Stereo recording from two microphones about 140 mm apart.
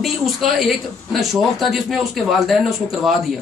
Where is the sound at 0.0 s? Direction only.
Centre (ahead or behind).